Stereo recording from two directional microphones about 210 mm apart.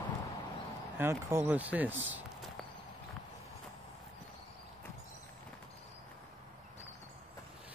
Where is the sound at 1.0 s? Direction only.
10° right (ahead or behind).